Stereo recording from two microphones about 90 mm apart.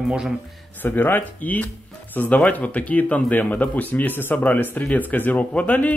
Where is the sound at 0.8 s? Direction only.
20° left (ahead or behind).